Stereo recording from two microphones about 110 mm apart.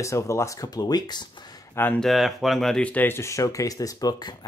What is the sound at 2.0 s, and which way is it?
Speech, centre (ahead or behind).